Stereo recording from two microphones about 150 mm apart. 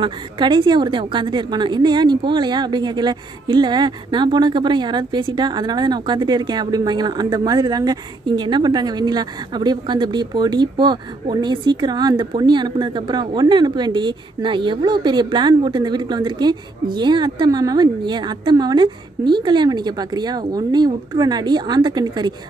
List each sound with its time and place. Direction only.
0.0 s a woman's voice: 30° right (ahead or behind)